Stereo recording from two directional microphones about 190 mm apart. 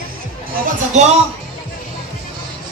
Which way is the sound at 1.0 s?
35° right (ahead or behind).